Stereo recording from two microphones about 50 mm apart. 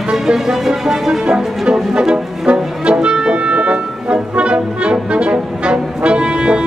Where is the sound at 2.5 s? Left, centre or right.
Centre.